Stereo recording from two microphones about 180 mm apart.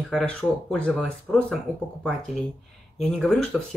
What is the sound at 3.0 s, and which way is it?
Speech, 5° left (ahead or behind).